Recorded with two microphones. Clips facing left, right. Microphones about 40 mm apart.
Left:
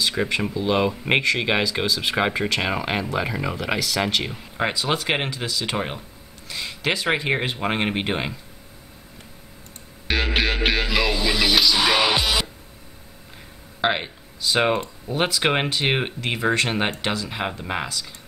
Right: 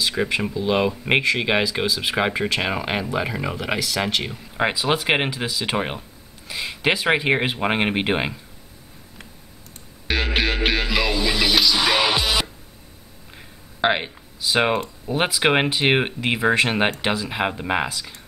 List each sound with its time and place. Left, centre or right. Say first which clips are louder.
0.0 s speech: right 1 dB; centre
4.6 s speech: right 2 dB; centre
10.0 s speech: even; centre
13.7 s speech: right 2 dB; centre